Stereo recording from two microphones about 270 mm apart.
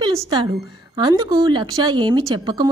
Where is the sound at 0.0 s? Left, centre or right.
Centre.